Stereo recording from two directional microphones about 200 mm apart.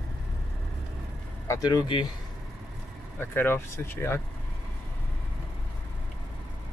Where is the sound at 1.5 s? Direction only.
20° left (ahead or behind).